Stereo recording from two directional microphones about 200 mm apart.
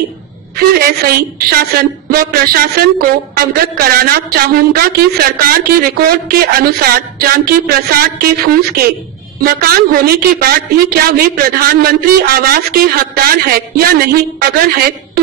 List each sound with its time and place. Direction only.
0.6 s a woman's voice: 50° right (ahead or behind)